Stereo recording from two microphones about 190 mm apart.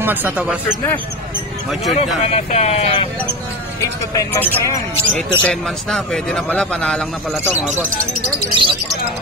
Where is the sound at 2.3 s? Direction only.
35° left (ahead or behind).